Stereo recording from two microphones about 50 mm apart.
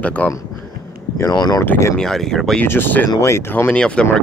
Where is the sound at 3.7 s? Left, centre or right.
Centre.